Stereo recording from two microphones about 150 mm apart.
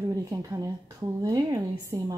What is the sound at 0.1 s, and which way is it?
A woman's voice, 20° right (ahead or behind).